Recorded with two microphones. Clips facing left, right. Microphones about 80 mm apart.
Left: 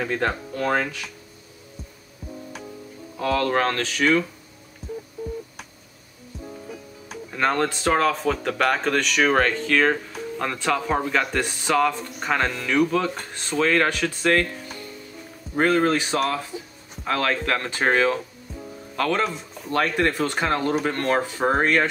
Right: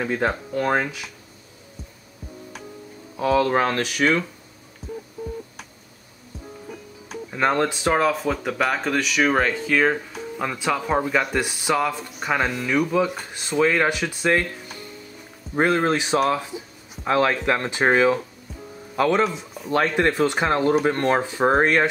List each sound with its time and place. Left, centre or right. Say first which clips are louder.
0.0 s speech: right 1 dB; centre
3.2 s speech: right 3 dB; centre
7.3 s speech: right 1 dB; centre
15.5 s speech: even; centre